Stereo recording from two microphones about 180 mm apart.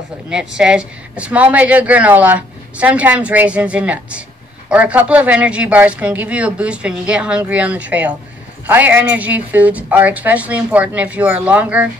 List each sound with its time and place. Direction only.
0.3 s speech: 5° right (ahead or behind)